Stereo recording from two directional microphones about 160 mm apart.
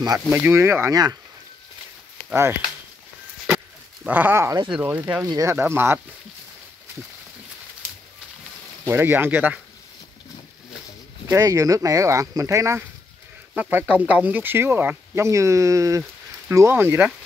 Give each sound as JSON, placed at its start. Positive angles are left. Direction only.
{"t": 0.3, "sound": "speech", "side_deg": -15}
{"t": 4.0, "sound": "speech", "side_deg": -10}
{"t": 8.8, "sound": "speech", "side_deg": -15}
{"t": 11.2, "sound": "speech", "side_deg": -20}